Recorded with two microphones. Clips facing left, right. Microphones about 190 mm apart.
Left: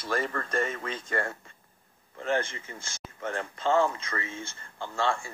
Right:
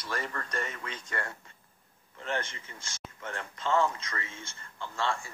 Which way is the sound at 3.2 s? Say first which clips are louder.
Left 6 dB; 40° left (ahead or behind).